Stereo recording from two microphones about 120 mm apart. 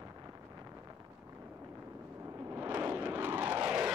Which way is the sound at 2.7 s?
20° right (ahead or behind).